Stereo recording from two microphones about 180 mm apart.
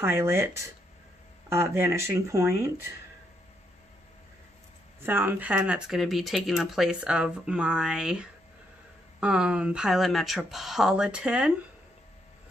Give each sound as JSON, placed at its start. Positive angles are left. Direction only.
{"t": 0.0, "sound": "speech", "side_deg": -15}
{"t": 1.5, "sound": "speech", "side_deg": -15}
{"t": 5.0, "sound": "speech", "side_deg": -10}